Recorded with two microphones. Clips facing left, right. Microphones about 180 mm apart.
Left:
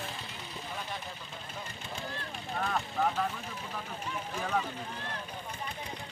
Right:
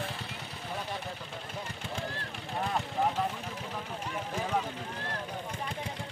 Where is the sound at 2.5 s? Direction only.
15° right (ahead or behind).